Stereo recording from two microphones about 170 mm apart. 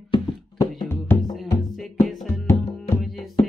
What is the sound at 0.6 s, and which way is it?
Music, 15° left (ahead or behind).